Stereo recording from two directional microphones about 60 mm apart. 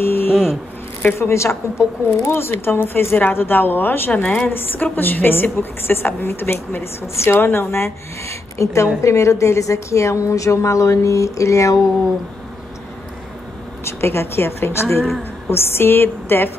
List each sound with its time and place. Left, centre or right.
0.0 s a sound: left
0.3 s speech: centre
1.1 s a woman's voice: left
4.1 s a woman's voice: left
4.5 s a woman's voice: left
13.8 s a woman's voice: left
15.0 s a sound: centre
15.5 s a woman's voice: left